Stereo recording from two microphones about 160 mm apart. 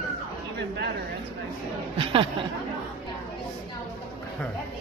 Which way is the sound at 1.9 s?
35° right (ahead or behind).